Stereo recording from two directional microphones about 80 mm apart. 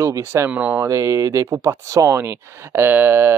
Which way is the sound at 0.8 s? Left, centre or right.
Right.